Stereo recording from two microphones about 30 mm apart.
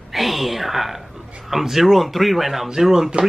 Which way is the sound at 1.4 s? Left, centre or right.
Centre.